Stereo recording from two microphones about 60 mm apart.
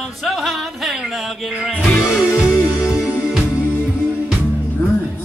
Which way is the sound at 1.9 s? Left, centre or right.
Left.